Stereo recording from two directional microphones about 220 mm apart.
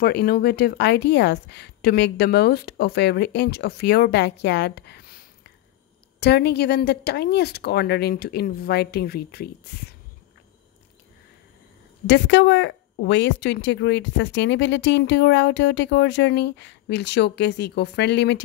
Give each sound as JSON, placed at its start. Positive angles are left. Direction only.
{"t": 0.0, "sound": "speech", "side_deg": 45}
{"t": 12.1, "sound": "speech", "side_deg": 55}